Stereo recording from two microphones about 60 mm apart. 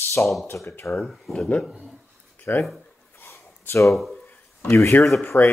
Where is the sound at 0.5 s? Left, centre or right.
Left.